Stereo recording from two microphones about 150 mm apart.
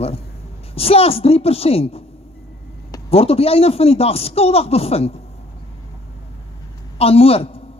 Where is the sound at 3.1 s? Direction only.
40° left (ahead or behind).